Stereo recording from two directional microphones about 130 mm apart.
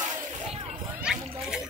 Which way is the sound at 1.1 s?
5° right (ahead or behind).